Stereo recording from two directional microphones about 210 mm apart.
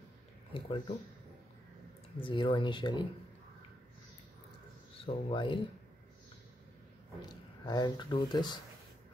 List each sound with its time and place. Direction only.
0.5 s speech: 25° left (ahead or behind)
2.1 s speech: 25° left (ahead or behind)
5.0 s speech: 25° left (ahead or behind)
7.2 s speech: 20° left (ahead or behind)